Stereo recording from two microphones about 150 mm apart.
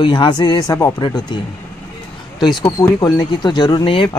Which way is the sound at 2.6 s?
20° left (ahead or behind).